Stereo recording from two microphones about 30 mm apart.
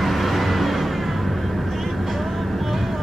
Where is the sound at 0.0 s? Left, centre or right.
Centre.